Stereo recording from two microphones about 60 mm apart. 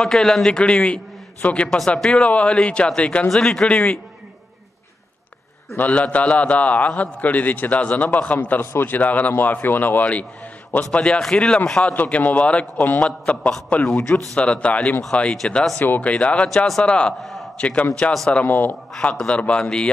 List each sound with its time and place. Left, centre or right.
0.0 s a man's voice: centre
3.3 s a man's voice: centre
3.6 s a man's voice: centre
5.8 s a man's voice: left
11.9 s a man's voice: left
15.4 s a man's voice: centre
16.0 s a man's voice: left
16.4 s speech: centre
16.8 s a man's voice: centre
17.2 s a sound: centre
17.6 s a man's voice: left
18.9 s a man's voice: centre